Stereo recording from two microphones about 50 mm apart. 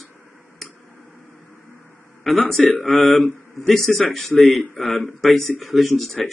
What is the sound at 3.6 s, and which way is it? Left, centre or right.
Speech, centre.